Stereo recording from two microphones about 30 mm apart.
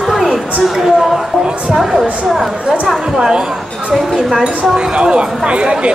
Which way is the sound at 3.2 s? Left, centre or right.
Right.